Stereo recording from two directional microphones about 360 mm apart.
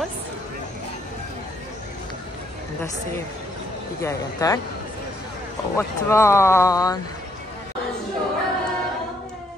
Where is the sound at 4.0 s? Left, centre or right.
Centre.